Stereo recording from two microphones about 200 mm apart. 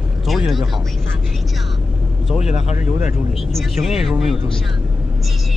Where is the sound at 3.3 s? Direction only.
Centre (ahead or behind).